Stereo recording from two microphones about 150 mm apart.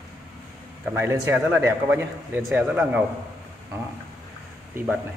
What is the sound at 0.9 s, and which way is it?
Speech, 10° right (ahead or behind).